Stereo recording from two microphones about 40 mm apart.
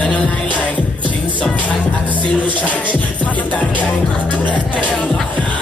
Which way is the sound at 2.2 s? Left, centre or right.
Left.